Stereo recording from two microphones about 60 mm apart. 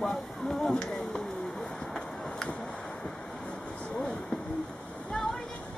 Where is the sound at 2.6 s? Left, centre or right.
Centre.